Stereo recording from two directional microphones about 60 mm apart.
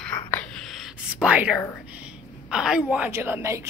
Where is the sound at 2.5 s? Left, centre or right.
Centre.